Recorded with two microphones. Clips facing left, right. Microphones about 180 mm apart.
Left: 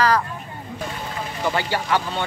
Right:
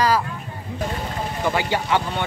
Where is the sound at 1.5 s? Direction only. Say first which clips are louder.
Even; 15° right (ahead or behind).